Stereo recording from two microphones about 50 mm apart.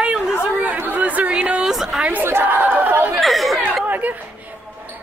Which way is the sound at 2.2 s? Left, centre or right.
Right.